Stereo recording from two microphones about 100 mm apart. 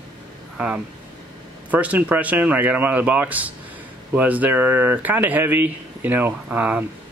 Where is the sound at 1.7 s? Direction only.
15° right (ahead or behind).